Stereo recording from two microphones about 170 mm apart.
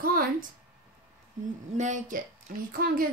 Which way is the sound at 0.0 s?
60° right (ahead or behind).